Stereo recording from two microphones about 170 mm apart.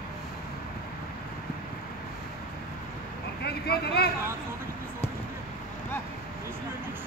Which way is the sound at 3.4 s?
70° left (ahead or behind).